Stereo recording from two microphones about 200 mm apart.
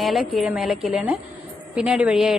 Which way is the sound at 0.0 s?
Centre (ahead or behind).